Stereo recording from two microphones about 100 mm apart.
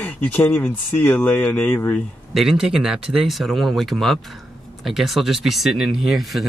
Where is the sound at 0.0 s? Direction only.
20° left (ahead or behind).